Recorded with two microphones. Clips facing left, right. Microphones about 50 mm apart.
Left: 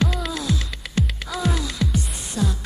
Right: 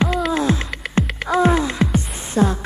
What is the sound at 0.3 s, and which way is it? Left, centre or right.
Music, right.